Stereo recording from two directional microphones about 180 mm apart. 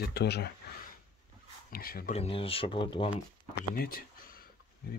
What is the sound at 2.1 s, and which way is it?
Speech, 30° left (ahead or behind).